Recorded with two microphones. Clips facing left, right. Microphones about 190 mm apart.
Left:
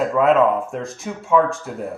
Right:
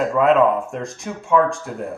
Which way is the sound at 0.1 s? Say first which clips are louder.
Right 1 dB; centre (ahead or behind).